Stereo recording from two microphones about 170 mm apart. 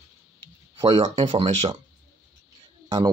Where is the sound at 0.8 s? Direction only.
35° right (ahead or behind).